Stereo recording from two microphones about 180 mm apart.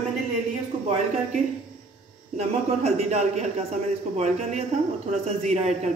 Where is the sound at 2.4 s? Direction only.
35° right (ahead or behind).